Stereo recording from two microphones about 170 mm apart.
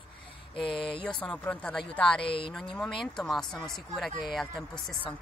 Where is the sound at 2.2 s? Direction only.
30° left (ahead or behind).